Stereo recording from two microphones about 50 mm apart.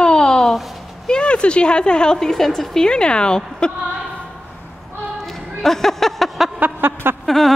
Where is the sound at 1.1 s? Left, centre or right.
Centre.